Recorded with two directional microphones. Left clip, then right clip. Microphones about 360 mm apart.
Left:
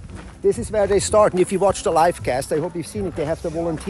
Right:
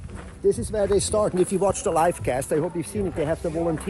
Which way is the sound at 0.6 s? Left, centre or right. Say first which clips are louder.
Left 4 dB; centre.